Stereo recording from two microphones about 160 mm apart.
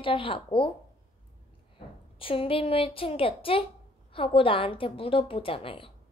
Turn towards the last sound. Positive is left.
turn(degrees=35)  # may be behind; listen again after turning